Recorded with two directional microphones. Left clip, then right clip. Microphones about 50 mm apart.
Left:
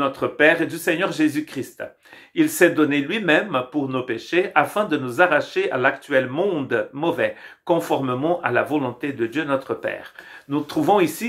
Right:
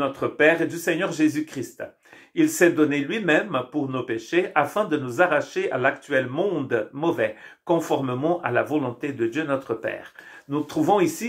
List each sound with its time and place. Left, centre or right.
0.0 s speech: left; by 9.9 s centre
10.5 s speech: left